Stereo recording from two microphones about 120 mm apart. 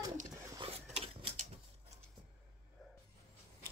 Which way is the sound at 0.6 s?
55° right (ahead or behind).